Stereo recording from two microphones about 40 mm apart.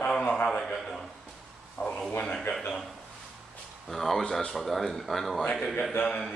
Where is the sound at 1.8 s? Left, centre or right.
Left.